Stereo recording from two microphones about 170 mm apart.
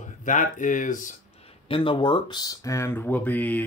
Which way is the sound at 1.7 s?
30° left (ahead or behind).